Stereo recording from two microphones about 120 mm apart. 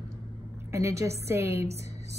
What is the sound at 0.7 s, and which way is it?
Speech, 25° right (ahead or behind).